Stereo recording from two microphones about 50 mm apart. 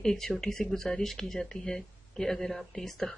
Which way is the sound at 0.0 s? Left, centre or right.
Centre.